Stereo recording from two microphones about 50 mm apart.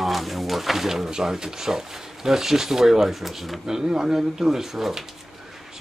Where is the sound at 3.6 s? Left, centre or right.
Centre.